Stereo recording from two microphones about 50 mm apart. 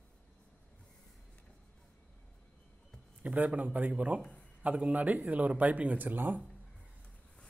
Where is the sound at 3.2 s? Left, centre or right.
Right.